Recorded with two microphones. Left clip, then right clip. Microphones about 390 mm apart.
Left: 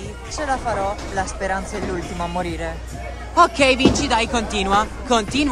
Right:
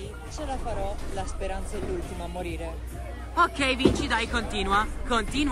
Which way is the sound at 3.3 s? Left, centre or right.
Centre.